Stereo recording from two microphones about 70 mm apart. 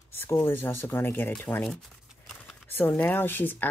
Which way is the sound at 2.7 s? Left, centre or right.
Left.